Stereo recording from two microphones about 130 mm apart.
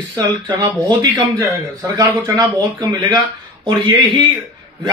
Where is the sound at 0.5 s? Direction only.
30° right (ahead or behind).